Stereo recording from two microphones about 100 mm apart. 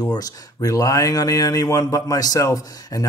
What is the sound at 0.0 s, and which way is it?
Speech, 40° left (ahead or behind).